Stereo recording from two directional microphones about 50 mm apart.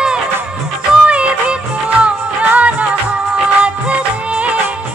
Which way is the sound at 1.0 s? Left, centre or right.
Right.